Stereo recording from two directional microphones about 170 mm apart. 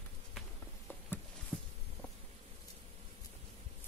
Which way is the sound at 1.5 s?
10° left (ahead or behind).